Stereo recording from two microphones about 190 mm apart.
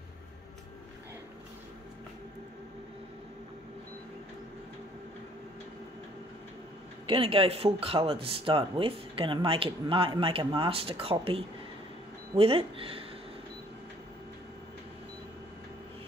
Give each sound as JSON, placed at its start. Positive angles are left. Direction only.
{"t": 7.1, "sound": "speech", "side_deg": -30}